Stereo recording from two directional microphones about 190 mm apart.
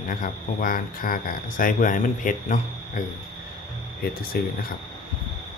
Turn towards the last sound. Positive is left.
turn(degrees=50)  # may be behind; listen again after turning